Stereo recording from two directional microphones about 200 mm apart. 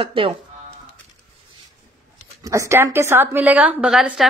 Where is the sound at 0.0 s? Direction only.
25° right (ahead or behind).